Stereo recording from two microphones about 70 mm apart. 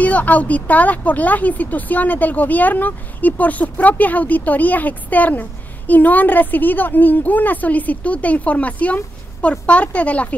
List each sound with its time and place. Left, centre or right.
0.0 s speech: left